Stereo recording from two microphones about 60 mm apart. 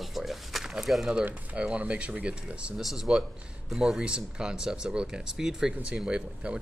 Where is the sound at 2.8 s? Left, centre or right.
Centre.